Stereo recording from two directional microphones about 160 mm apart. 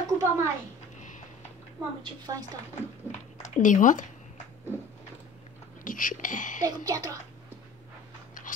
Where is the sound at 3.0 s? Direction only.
50° left (ahead or behind).